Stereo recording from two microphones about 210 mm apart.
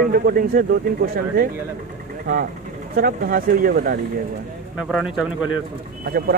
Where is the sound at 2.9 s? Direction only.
45° right (ahead or behind).